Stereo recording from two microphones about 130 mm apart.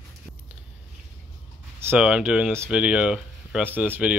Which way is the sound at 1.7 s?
20° right (ahead or behind).